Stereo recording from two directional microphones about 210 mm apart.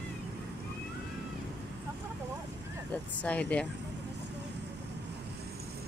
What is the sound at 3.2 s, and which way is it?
Speech, 5° left (ahead or behind).